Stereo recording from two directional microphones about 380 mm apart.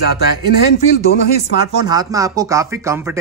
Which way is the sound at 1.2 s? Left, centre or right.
Left.